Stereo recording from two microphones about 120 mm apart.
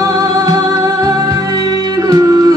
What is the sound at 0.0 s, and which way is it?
Music, 30° right (ahead or behind).